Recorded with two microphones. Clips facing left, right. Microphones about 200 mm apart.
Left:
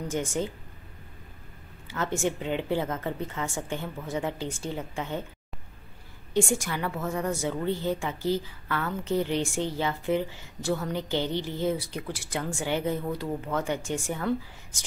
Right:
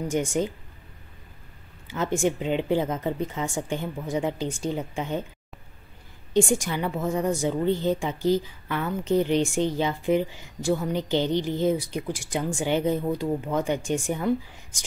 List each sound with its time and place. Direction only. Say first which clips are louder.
0.1 s a woman's voice: right 4 dB; 15° right (ahead or behind)
1.9 s a woman's voice: right 4 dB; 15° right (ahead or behind)
6.3 s a woman's voice: right 4 dB; 15° right (ahead or behind)